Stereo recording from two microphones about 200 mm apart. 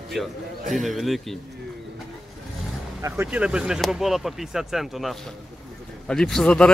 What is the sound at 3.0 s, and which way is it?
Speech, 10° right (ahead or behind).